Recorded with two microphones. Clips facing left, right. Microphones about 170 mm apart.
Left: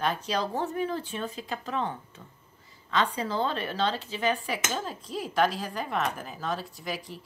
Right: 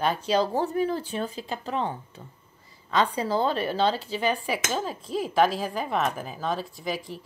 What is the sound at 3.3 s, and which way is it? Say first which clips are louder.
Speech: right 4 dB; 35° right (ahead or behind).